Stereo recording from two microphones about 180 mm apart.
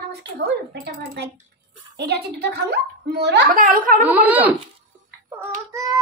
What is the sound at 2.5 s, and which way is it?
A child's voice, 65° right (ahead or behind).